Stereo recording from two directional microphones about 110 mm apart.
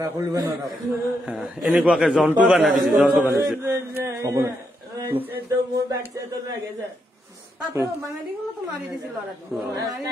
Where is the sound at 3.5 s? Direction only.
20° right (ahead or behind).